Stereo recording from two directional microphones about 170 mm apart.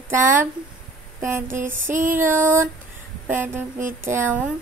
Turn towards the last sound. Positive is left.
turn(degrees=-15)  # may be behind; listen again after turning